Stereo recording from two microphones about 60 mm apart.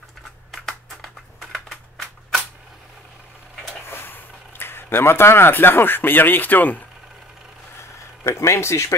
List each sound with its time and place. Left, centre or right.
0.5 s a sound: centre
3.9 s speech: left
8.3 s speech: left